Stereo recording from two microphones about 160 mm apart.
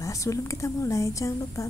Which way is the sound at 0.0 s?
20° left (ahead or behind).